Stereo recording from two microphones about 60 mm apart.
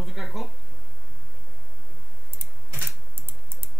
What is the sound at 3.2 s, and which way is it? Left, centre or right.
Typing, right.